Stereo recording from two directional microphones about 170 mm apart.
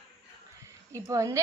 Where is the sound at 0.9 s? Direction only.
20° right (ahead or behind).